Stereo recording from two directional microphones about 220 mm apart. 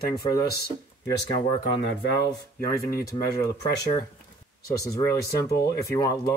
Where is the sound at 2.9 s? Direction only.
45° left (ahead or behind).